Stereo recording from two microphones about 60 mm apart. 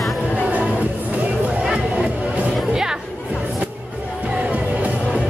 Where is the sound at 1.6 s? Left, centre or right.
Centre.